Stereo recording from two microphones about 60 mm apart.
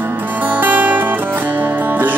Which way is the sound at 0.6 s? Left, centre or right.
Right.